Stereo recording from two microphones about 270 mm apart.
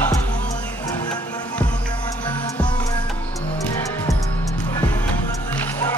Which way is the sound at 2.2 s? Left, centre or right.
Centre.